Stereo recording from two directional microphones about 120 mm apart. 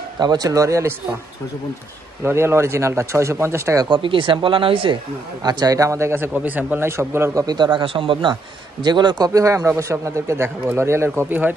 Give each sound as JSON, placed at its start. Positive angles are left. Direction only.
{"t": 0.2, "sound": "a man's voice", "side_deg": -35}
{"t": 2.2, "sound": "a man's voice", "side_deg": -20}
{"t": 3.9, "sound": "speech", "side_deg": -45}
{"t": 5.4, "sound": "a man's voice", "side_deg": -35}
{"t": 7.4, "sound": "a man's voice", "side_deg": -40}